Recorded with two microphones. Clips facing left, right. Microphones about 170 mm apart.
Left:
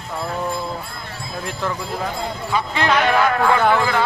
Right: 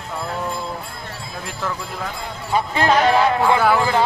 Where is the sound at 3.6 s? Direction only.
10° right (ahead or behind).